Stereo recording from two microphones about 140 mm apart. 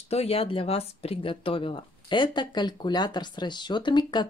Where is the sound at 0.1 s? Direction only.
45° left (ahead or behind).